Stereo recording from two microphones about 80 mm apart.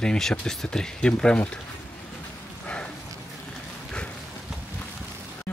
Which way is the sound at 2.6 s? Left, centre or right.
Centre.